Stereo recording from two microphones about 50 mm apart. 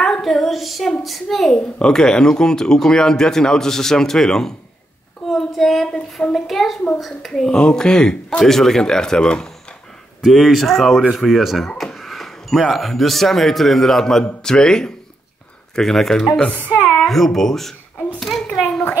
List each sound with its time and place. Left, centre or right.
0.0 s child singing: centre
1.0 s speech: centre
1.8 s speech: centre
5.3 s a sound: centre
6.3 s speech: centre
16.4 s speech: left
17.0 s speech: centre
18.2 s a sound: centre